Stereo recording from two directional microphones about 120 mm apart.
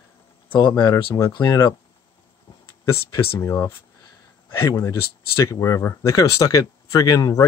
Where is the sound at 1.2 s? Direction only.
25° left (ahead or behind).